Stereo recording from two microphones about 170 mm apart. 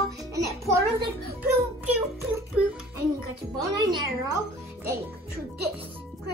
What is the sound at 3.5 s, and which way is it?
Speech, 25° right (ahead or behind).